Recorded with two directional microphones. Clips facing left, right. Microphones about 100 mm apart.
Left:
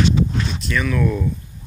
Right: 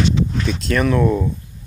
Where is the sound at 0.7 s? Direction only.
45° right (ahead or behind).